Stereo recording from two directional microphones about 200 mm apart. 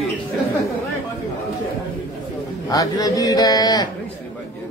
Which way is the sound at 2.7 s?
20° left (ahead or behind).